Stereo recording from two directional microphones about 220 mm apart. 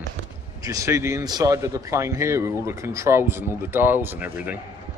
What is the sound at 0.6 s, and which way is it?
Speech, 15° right (ahead or behind).